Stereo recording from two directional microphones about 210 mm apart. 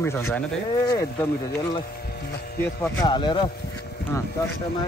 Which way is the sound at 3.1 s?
20° left (ahead or behind).